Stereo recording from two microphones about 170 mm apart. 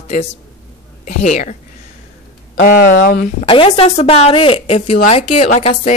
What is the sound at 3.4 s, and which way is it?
Speech, 30° left (ahead or behind).